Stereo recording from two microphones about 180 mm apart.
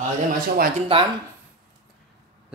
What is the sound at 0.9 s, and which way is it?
Speech, 30° right (ahead or behind).